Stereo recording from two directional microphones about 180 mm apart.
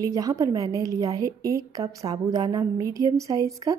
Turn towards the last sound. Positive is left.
turn(degrees=-20)  # may be behind; listen again after turning